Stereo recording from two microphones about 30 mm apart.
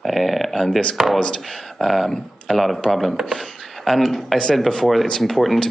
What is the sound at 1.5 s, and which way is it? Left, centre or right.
Speech, centre.